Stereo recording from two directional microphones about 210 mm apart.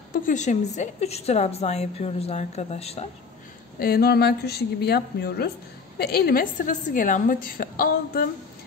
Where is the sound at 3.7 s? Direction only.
45° left (ahead or behind).